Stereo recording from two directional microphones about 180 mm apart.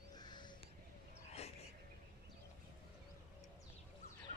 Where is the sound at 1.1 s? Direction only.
35° left (ahead or behind).